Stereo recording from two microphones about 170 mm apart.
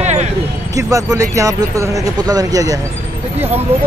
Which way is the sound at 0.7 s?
20° right (ahead or behind).